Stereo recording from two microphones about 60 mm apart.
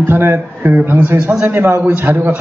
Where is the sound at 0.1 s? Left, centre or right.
Right.